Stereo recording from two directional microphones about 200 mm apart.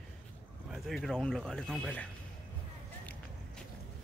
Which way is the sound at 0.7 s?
Centre (ahead or behind).